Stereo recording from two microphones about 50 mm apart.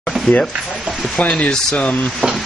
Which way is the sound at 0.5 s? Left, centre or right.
Centre.